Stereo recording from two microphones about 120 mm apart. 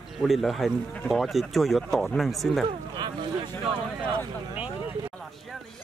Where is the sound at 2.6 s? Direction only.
35° right (ahead or behind).